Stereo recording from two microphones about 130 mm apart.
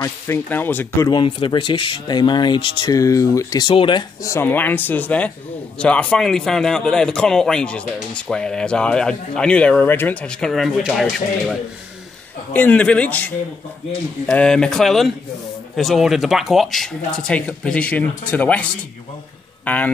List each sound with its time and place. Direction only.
0.0 s speech: 15° left (ahead or behind)
1.1 s speech: 40° left (ahead or behind)
2.9 s speech: 25° left (ahead or behind)
4.2 s a man's voice: 20° left (ahead or behind); by 11.5 s centre (ahead or behind)
12.5 s a man's voice: 10° left (ahead or behind)